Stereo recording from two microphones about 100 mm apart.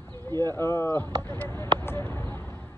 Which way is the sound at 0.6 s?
25° left (ahead or behind).